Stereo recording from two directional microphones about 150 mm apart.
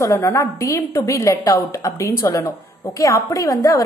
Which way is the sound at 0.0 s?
20° left (ahead or behind).